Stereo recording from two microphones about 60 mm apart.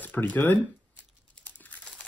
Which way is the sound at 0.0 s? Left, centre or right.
Left.